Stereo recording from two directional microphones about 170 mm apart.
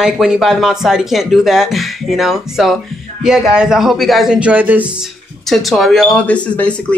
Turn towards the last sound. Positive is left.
turn(degrees=5)  # may be behind; listen again after turning